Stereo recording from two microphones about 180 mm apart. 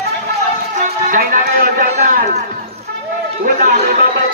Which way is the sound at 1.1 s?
50° right (ahead or behind).